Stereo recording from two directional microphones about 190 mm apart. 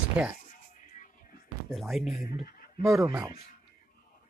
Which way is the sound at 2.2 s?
50° left (ahead or behind).